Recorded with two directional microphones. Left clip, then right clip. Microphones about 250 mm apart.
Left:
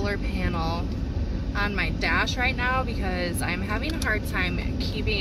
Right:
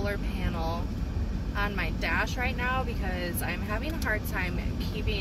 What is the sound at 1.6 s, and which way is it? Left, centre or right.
Speech, left.